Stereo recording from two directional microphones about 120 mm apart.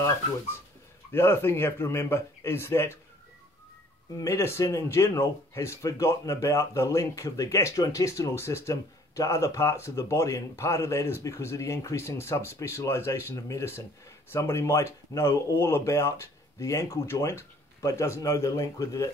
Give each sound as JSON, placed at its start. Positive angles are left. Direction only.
{"t": 1.1, "sound": "speech", "side_deg": 20}
{"t": 4.2, "sound": "speech", "side_deg": 20}